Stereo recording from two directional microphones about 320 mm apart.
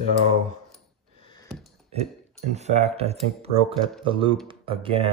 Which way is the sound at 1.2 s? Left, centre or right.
Centre.